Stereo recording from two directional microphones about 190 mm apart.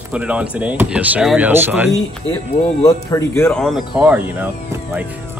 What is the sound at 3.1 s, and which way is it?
Speech, 15° left (ahead or behind).